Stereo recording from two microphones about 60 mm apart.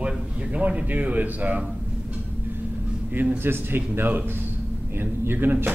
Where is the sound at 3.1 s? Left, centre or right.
Right.